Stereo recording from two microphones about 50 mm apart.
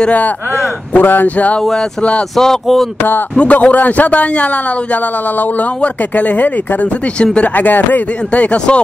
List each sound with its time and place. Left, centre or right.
0.9 s speech: left
2.3 s speech: centre
3.3 s speech: left
5.8 s speech: left